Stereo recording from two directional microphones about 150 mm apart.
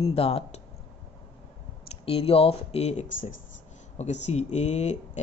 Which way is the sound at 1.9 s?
40° left (ahead or behind).